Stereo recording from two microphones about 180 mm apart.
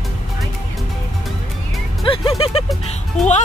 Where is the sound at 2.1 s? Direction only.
30° left (ahead or behind).